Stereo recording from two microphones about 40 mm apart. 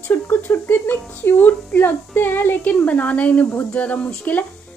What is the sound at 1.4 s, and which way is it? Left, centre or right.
Speech, left.